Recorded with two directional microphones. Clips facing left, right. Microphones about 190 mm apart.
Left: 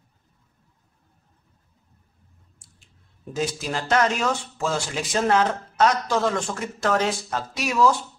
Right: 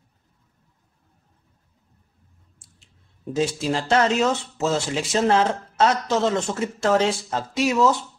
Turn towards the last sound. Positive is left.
turn(degrees=-25)  # may be behind; listen again after turning